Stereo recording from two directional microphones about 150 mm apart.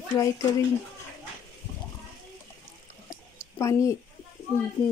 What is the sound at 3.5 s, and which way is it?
Speech, 20° left (ahead or behind).